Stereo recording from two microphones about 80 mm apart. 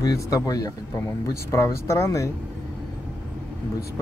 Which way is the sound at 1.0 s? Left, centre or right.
Left.